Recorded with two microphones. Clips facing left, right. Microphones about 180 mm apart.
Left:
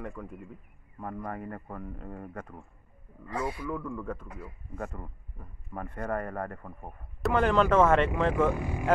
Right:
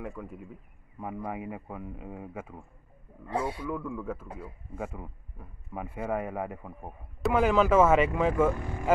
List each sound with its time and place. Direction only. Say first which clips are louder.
0.0 s a man's voice: right 1 dB; 5° right (ahead or behind)
3.3 s a man's voice: right 2 dB; 30° right (ahead or behind)
3.7 s a man's voice: right 1 dB; 5° right (ahead or behind)
8.5 s speech: left 3 dB; 10° left (ahead or behind)